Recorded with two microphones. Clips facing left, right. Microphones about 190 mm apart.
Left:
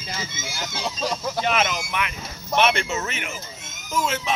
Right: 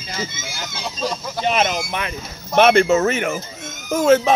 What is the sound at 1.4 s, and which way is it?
Speech, 35° right (ahead or behind).